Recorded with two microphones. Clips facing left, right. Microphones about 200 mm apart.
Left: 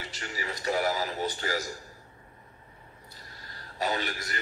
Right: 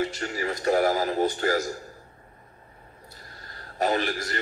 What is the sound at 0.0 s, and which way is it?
Speech, 50° right (ahead or behind).